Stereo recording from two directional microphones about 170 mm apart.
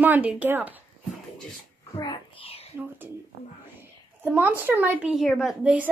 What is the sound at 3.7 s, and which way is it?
A woman's voice, 10° right (ahead or behind).